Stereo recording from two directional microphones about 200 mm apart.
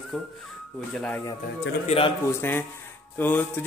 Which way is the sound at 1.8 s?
30° left (ahead or behind).